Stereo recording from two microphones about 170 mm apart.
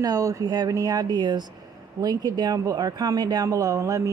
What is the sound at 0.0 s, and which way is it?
Speech, 20° right (ahead or behind).